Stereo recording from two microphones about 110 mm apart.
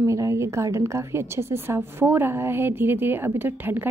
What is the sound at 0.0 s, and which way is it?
A woman's voice, 30° right (ahead or behind).